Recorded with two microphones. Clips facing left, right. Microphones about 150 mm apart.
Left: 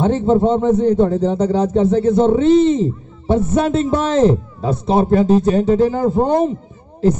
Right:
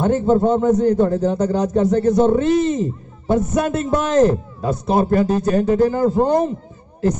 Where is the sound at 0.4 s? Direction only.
25° left (ahead or behind).